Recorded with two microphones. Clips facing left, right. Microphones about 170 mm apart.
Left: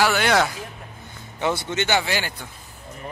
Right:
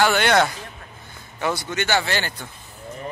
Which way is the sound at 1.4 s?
20° left (ahead or behind).